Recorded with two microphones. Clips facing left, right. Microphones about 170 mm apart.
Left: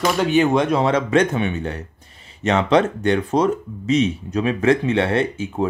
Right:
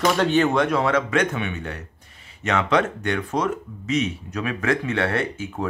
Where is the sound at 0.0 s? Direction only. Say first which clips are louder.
Left 2 dB; 10° left (ahead or behind).